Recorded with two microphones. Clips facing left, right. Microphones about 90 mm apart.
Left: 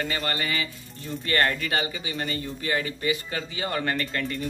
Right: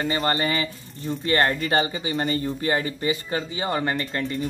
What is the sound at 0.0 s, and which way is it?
Speech, 30° right (ahead or behind).